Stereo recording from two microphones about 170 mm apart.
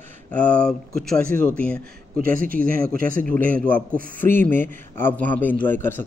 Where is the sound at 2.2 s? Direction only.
55° right (ahead or behind).